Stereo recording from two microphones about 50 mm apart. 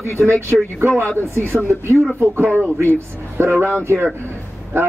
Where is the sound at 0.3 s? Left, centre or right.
Right.